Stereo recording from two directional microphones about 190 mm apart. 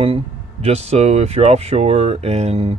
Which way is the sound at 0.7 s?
35° right (ahead or behind).